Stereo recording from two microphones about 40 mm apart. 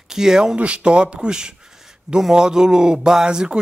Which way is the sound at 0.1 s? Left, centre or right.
Centre.